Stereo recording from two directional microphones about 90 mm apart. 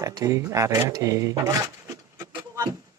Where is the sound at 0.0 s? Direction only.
35° right (ahead or behind).